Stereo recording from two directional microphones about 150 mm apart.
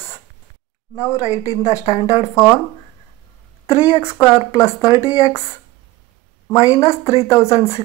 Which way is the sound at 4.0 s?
20° left (ahead or behind).